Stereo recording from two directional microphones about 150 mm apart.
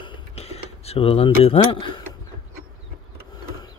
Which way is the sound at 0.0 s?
40° left (ahead or behind).